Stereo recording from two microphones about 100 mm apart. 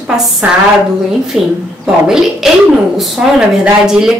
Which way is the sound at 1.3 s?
5° right (ahead or behind).